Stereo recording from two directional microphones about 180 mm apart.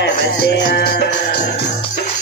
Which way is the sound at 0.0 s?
65° left (ahead or behind).